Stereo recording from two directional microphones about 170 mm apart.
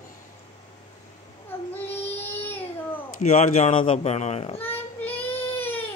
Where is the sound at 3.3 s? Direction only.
45° left (ahead or behind).